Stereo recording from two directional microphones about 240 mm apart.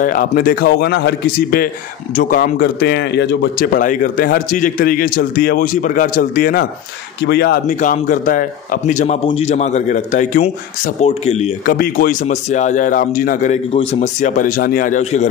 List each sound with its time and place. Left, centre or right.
0.0 s speech: left
3.7 s a man's voice: left